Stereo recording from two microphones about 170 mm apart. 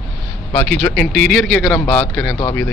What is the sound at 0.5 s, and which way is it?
A man's voice, 10° left (ahead or behind).